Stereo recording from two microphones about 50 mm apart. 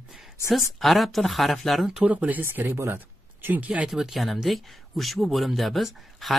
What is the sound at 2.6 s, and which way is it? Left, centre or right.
Speech, right.